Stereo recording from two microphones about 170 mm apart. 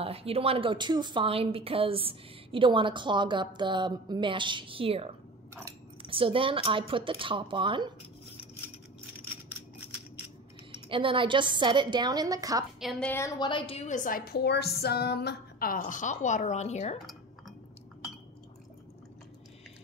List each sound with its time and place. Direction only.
0.0 s a woman's voice: 35° right (ahead or behind)
10.7 s a woman's voice: 30° right (ahead or behind)
13.1 s a woman's voice: 20° left (ahead or behind); by 17.0 s 40° left (ahead or behind)
17.0 s cutlery: centre (ahead or behind)